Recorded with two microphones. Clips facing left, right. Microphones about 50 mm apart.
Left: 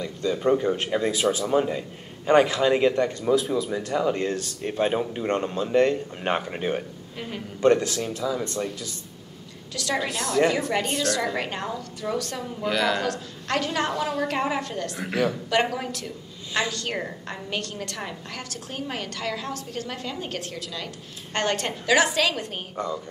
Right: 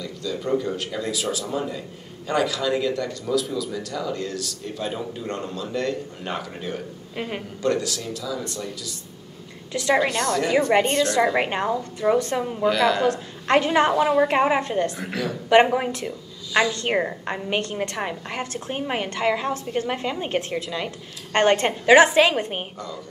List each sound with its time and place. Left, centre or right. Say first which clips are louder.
0.0 s speech: left 4 dB; left
7.2 s a woman's voice: right 5 dB; right
7.6 s speech: left 4 dB; left
9.9 s a woman's voice: right 2 dB; centre
10.7 s a woman's voice: right 6 dB; right
12.6 s a woman's voice: right 4 dB; centre
13.0 s a woman's voice: right 6 dB; right